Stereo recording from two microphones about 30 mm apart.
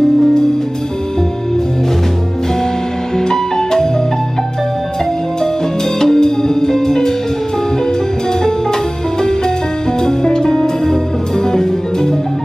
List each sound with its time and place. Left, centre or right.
3.2 s music: centre
5.9 s music: centre
10.0 s music: left